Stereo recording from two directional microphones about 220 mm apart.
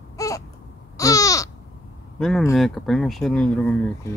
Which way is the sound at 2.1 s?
5° left (ahead or behind).